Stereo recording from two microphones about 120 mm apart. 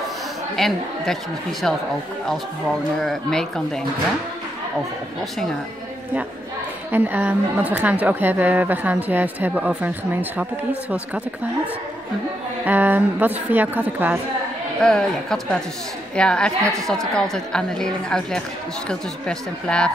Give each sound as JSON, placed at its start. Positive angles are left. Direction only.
{"t": 0.6, "sound": "speech", "side_deg": 5}
{"t": 3.0, "sound": "speech", "side_deg": 5}
{"t": 6.9, "sound": "a woman's voice", "side_deg": -15}
{"t": 12.6, "sound": "a woman's voice", "side_deg": -15}
{"t": 14.8, "sound": "speech", "side_deg": 5}